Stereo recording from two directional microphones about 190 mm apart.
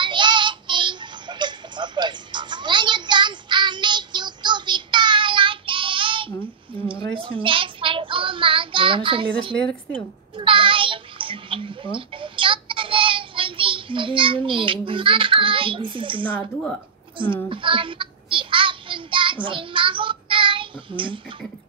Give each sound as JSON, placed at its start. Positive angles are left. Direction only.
{"t": 0.0, "sound": "music", "side_deg": -25}
{"t": 7.2, "sound": "child singing", "side_deg": -25}
{"t": 9.6, "sound": "speech", "side_deg": 5}
{"t": 10.3, "sound": "a sound", "side_deg": -25}
{"t": 17.5, "sound": "child singing", "side_deg": -25}